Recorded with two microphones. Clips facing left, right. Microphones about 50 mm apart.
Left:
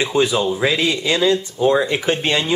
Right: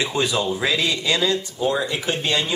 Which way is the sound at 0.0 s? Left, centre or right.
Centre.